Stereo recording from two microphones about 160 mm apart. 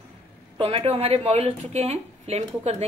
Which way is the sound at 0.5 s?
35° right (ahead or behind).